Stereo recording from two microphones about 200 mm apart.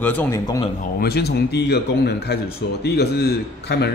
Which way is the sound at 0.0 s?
10° left (ahead or behind).